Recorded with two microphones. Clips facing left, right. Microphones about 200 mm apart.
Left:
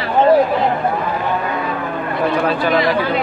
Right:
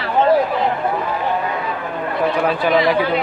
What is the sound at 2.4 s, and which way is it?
Speech, 15° right (ahead or behind).